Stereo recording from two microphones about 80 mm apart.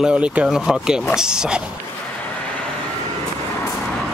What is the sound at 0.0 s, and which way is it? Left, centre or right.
Speech, centre.